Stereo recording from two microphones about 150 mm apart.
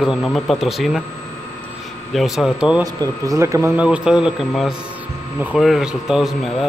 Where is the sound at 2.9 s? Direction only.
25° right (ahead or behind).